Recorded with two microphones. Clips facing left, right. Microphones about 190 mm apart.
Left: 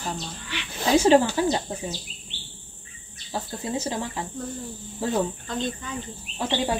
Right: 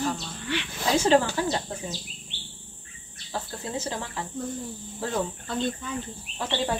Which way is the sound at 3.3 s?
15° left (ahead or behind).